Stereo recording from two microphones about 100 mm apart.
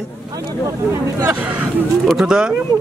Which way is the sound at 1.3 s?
15° right (ahead or behind).